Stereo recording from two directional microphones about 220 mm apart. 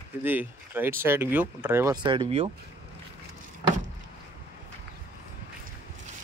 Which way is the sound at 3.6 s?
20° right (ahead or behind).